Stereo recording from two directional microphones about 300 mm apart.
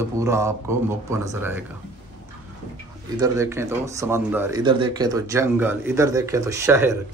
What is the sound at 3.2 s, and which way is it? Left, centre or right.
Speech, centre.